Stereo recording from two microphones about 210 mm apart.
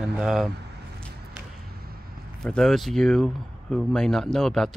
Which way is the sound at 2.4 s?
Centre (ahead or behind).